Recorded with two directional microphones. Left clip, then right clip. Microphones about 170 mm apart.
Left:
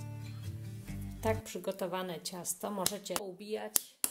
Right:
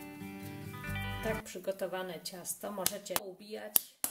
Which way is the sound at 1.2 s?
25° left (ahead or behind).